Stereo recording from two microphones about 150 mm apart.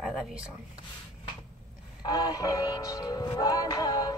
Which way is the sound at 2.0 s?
25° left (ahead or behind).